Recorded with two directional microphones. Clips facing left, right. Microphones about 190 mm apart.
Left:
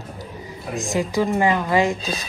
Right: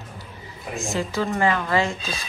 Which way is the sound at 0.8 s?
15° left (ahead or behind).